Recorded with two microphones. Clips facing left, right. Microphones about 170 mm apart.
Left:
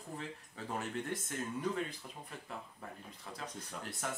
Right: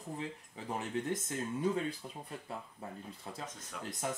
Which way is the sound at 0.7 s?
20° right (ahead or behind).